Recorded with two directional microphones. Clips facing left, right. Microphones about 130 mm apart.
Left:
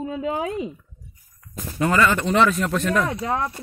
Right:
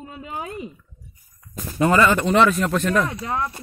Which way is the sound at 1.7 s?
20° right (ahead or behind).